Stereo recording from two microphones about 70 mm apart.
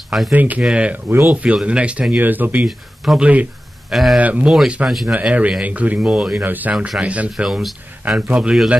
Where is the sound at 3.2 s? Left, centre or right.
Right.